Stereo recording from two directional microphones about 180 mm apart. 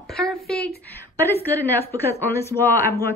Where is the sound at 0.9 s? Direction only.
10° left (ahead or behind).